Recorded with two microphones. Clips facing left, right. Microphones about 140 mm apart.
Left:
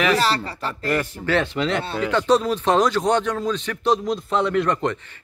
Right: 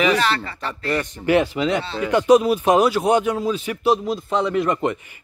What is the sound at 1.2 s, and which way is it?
A man's voice, 15° right (ahead or behind).